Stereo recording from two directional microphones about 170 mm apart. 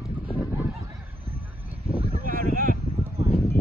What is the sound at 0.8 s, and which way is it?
Honk, 20° right (ahead or behind).